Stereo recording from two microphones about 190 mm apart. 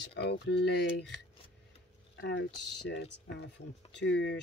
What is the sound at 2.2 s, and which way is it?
Speech, 65° left (ahead or behind).